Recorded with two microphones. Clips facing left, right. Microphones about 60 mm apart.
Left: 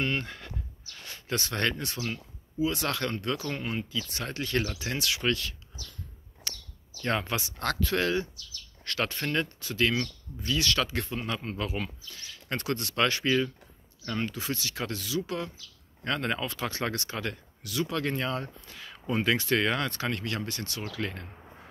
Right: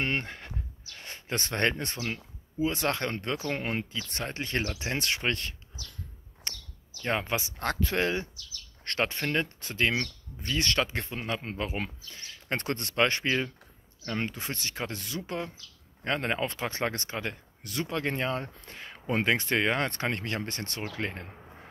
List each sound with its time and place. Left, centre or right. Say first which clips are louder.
0.0 s a sound: even; right
0.9 s speech: left 1 dB; right
3.5 s speech: right 1 dB; right
4.2 s speech: left 1 dB; right
6.5 s chirp: even; right
7.0 s speech: even; centre; by 15.3 s right
16.0 s speech: right 1 dB; right
17.6 s speech: left 3 dB; right
17.9 s speech: right 3 dB; right